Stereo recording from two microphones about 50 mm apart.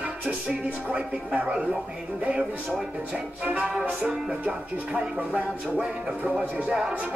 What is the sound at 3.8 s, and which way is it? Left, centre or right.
Speech, right.